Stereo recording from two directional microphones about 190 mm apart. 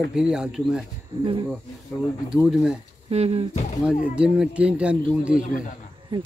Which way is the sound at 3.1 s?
30° right (ahead or behind).